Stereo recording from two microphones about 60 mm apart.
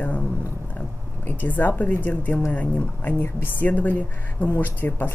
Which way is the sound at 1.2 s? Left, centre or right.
Left.